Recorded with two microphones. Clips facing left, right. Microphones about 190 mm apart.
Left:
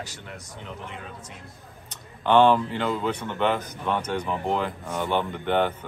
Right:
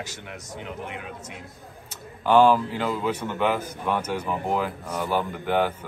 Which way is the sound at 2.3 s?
5° right (ahead or behind).